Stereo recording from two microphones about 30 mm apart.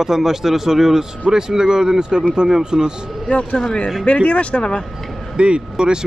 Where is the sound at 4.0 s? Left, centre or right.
Left.